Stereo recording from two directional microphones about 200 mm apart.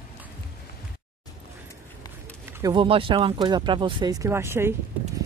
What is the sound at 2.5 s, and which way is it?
Speech, 20° right (ahead or behind).